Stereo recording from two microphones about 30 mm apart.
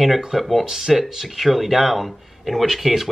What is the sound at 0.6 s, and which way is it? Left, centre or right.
Speech, centre.